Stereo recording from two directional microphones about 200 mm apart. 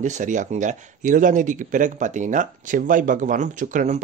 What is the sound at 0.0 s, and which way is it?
Speech, 40° right (ahead or behind).